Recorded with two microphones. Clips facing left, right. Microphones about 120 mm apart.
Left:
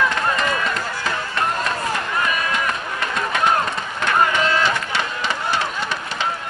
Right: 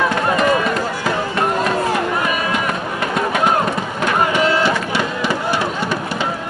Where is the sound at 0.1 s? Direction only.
15° right (ahead or behind).